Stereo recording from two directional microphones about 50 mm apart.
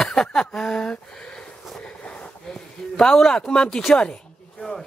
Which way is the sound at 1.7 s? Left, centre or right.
Left.